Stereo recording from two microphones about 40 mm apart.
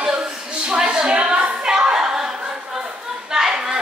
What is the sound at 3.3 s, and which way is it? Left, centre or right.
Chatter, centre.